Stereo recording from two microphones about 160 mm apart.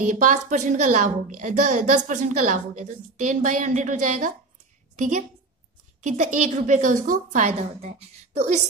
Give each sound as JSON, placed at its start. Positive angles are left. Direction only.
{"t": 0.0, "sound": "a woman's voice", "side_deg": -55}